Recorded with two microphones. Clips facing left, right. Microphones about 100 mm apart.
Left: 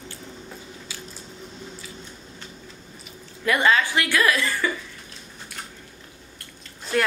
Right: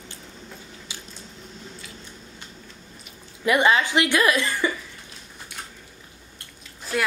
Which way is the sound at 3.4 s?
20° right (ahead or behind).